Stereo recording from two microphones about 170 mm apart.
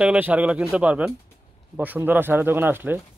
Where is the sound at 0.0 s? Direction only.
10° right (ahead or behind).